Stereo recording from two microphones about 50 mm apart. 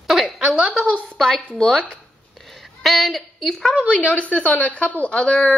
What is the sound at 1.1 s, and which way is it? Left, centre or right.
Speech, centre.